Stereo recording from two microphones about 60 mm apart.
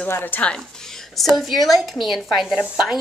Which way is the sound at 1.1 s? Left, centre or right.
Centre.